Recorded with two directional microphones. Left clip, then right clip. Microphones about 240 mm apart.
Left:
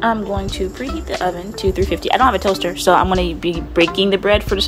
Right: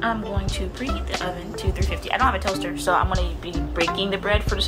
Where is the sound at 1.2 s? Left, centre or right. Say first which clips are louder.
Left 9 dB; left.